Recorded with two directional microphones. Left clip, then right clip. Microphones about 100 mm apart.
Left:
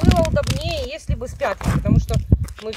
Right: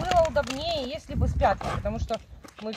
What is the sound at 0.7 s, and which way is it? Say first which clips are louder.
Speech: left 4 dB; 55° left (ahead or behind).